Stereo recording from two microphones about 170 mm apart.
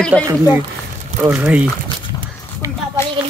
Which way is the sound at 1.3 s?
10° right (ahead or behind).